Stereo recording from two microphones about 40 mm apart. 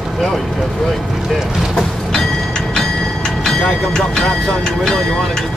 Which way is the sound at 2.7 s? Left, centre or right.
Centre.